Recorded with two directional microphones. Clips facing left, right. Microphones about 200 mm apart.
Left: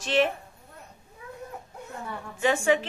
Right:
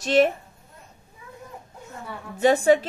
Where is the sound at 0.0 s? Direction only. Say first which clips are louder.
Right 5 dB; 40° right (ahead or behind).